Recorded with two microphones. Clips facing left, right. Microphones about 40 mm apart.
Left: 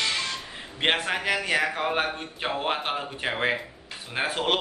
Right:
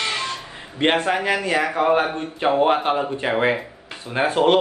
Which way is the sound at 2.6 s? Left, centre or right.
Centre.